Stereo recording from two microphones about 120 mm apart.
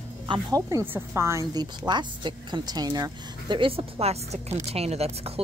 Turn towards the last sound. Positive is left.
turn(degrees=-60)  # may be behind; listen again after turning